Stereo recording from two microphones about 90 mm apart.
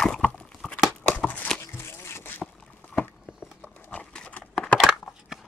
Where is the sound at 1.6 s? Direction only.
25° left (ahead or behind).